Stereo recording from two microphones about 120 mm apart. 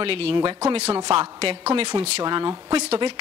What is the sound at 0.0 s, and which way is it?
A woman's voice, 50° right (ahead or behind).